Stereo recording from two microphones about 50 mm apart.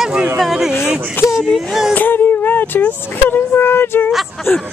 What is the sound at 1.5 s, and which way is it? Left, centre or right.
Speech, centre.